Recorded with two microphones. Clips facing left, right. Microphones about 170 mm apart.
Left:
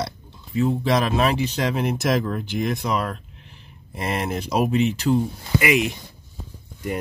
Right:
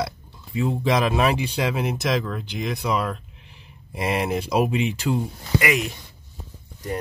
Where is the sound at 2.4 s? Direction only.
50° left (ahead or behind).